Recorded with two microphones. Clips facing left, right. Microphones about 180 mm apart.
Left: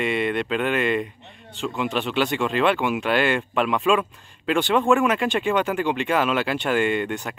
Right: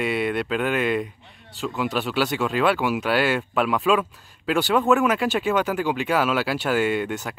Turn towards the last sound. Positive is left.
turn(degrees=0)  # may be behind; listen again after turning